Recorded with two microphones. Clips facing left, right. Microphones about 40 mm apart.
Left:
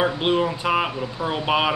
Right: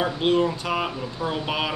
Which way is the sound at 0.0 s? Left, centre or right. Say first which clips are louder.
Left 1 dB; centre.